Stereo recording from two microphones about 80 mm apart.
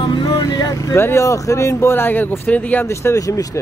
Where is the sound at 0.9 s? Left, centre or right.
Left.